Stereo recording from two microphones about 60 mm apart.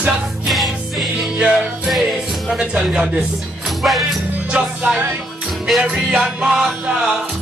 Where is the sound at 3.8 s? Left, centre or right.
Centre.